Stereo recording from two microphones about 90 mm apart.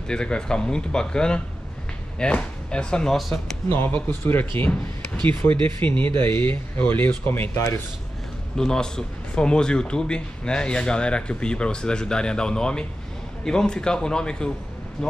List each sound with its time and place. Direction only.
0.1 s speech: 10° left (ahead or behind)
3.6 s speech: 30° left (ahead or behind)
7.5 s speech: 35° left (ahead or behind)
8.5 s speech: 5° left (ahead or behind)